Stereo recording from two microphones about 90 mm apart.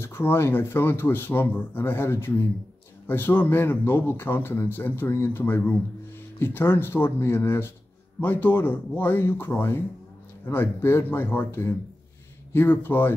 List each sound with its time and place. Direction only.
0.0 s speech: 25° left (ahead or behind)